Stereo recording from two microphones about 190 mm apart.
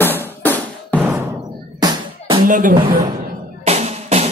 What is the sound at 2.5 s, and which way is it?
Speech, 45° right (ahead or behind).